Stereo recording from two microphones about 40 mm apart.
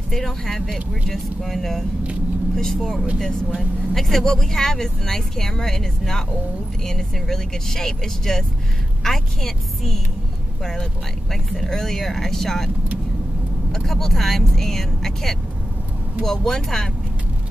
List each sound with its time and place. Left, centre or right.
0.1 s speech: centre
13.8 s speech: centre